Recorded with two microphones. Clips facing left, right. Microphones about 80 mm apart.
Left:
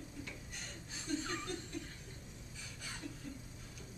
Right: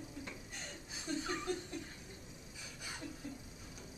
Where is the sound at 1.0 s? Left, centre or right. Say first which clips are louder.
Even; centre.